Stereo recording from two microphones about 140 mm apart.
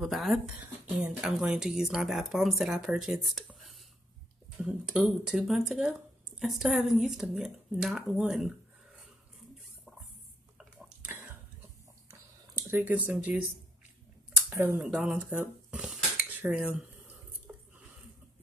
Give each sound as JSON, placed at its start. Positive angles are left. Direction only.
{"t": 0.0, "sound": "speech", "side_deg": 0}
{"t": 12.1, "sound": "a sound", "side_deg": -20}
{"t": 14.5, "sound": "speech", "side_deg": -15}
{"t": 14.8, "sound": "speech", "side_deg": -5}